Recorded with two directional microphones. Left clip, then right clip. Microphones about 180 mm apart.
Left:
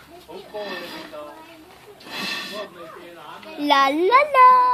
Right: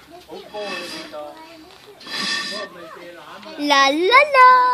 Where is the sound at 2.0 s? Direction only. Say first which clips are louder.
Right 5 dB; 5° right (ahead or behind).